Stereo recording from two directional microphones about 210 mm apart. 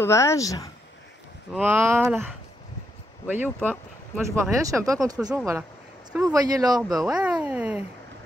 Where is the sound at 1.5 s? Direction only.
10° right (ahead or behind).